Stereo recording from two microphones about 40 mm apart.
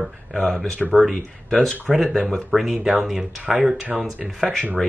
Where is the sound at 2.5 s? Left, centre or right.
Centre.